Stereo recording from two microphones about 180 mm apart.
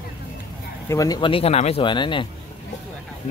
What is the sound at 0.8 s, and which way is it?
Speech, 20° left (ahead or behind).